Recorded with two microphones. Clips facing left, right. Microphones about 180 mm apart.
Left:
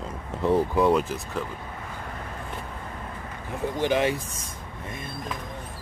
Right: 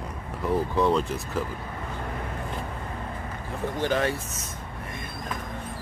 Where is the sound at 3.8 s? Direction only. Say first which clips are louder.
Left 2 dB; 15° left (ahead or behind).